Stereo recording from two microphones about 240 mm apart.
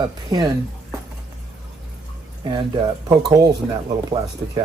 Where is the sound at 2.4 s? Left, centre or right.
Centre.